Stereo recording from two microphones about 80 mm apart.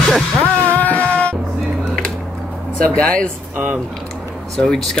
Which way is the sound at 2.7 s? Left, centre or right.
Centre.